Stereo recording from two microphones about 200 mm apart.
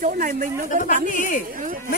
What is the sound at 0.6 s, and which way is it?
Speech, 40° left (ahead or behind).